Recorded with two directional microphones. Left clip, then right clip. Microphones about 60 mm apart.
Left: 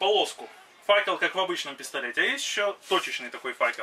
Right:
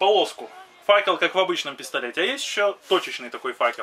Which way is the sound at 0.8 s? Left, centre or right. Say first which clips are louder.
Right 4 dB; centre.